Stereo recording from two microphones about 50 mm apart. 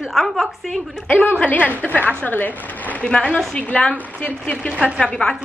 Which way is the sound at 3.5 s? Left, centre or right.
Left.